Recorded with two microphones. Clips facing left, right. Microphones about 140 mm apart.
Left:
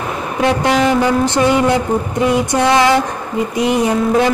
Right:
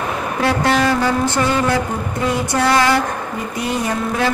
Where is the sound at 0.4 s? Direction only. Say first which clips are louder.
Left 3 dB; 20° left (ahead or behind).